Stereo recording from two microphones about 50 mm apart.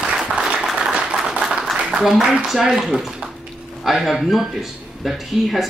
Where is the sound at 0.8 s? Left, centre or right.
Centre.